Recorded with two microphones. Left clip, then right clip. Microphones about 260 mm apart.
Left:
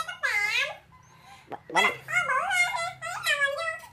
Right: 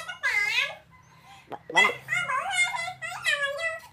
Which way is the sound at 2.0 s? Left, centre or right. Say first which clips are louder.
Left 2 dB; centre.